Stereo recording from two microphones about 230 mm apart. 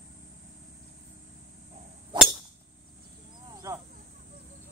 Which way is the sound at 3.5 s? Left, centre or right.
Centre.